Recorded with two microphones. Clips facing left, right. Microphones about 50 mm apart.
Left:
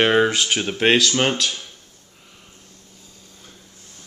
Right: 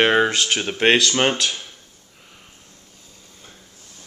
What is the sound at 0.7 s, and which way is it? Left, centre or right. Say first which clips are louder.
Speech: right 1 dB; centre.